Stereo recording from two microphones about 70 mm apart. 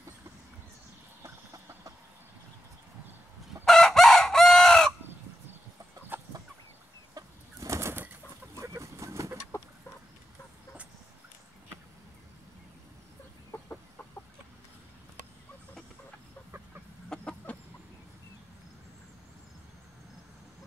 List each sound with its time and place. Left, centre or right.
1.2 s chicken: right
3.6 s chicken: centre
6.1 s chicken: right
7.6 s bird flight: right
8.5 s vehicle: right
17.1 s chicken: centre